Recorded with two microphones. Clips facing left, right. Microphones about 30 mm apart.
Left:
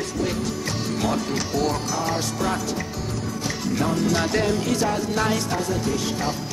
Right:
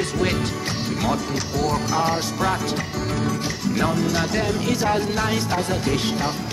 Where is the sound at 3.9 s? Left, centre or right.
Centre.